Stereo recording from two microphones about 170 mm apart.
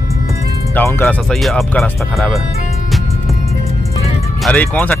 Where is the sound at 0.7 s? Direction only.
10° left (ahead or behind).